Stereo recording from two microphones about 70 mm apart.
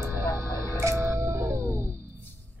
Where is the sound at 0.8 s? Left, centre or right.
Right.